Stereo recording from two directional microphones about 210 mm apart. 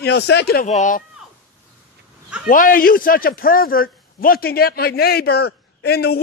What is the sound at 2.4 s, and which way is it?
A man's voice, 40° left (ahead or behind).